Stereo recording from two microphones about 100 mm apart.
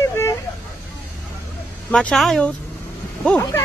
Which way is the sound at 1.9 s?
10° left (ahead or behind).